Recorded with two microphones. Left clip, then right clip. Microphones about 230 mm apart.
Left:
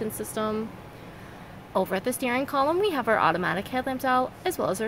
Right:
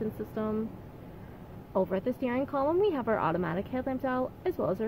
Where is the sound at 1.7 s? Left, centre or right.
Centre.